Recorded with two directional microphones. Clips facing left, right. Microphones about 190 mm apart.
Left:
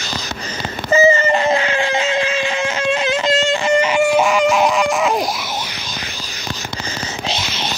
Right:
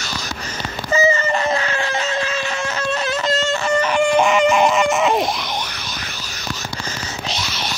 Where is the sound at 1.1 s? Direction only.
30° left (ahead or behind).